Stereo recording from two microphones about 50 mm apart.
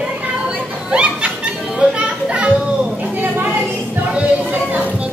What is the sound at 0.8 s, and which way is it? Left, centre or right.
Laughter, centre.